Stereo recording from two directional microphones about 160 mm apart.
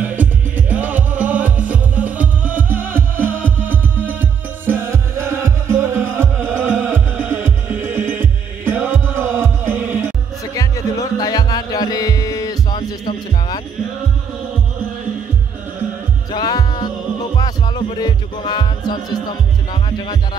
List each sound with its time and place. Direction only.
0.0 s music: 10° right (ahead or behind)
10.4 s music: 20° left (ahead or behind)
16.3 s music: 25° left (ahead or behind)